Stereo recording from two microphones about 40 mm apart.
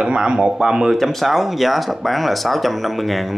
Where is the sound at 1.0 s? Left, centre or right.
Centre.